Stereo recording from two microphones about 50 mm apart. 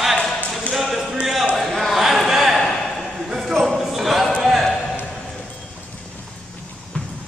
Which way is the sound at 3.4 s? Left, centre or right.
Centre.